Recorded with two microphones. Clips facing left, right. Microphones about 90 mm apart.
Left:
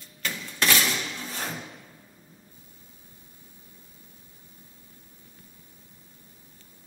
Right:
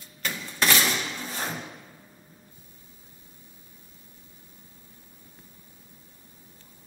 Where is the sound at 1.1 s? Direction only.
Centre (ahead or behind).